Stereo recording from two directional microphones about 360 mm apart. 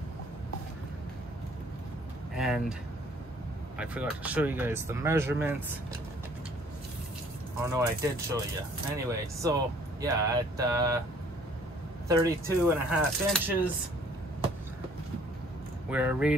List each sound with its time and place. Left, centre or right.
2.3 s a sound: centre
3.7 s speech: centre
7.7 s speech: centre
12.1 s speech: centre
15.9 s speech: centre